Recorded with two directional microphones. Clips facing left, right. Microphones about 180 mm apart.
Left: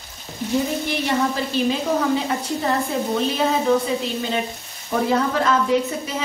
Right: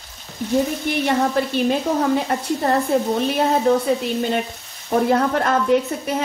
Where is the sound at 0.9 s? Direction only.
55° right (ahead or behind).